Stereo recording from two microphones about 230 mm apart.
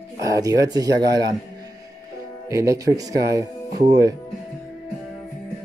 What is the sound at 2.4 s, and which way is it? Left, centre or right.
Speech, centre.